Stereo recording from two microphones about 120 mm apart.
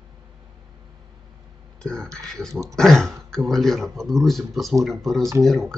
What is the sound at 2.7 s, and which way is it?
Speech, 5° left (ahead or behind).